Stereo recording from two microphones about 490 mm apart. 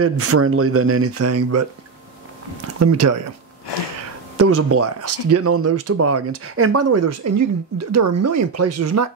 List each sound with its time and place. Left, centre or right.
0.0 s speech: right
2.8 s speech: right
3.7 s a sound: left
4.4 s speech: right